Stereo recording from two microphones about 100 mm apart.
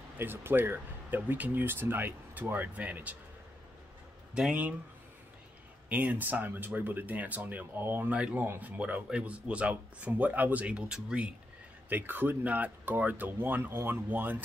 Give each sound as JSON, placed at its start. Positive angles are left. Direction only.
{"t": 0.2, "sound": "speech", "side_deg": -20}
{"t": 4.4, "sound": "speech", "side_deg": -10}
{"t": 5.9, "sound": "speech", "side_deg": -15}
{"t": 11.9, "sound": "speech", "side_deg": -20}